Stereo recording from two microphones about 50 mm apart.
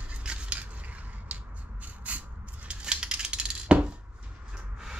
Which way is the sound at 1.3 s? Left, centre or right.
Right.